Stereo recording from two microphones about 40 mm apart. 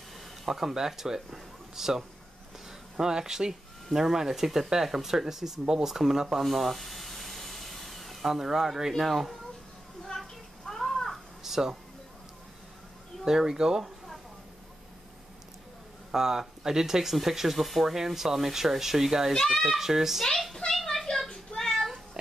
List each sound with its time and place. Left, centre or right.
0.5 s speech: centre
6.4 s a sound: centre
8.9 s speech: centre
10.7 s crow: centre
11.4 s a sound: centre
13.2 s speech: centre
16.1 s speech: centre
19.3 s a child's voice: centre
19.8 s speech: centre
20.7 s a sound: centre
22.2 s music: centre